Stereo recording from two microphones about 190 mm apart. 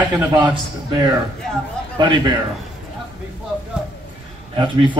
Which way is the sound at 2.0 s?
25° right (ahead or behind).